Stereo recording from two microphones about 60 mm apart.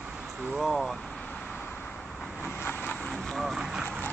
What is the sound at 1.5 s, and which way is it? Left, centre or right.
Vehicle, left.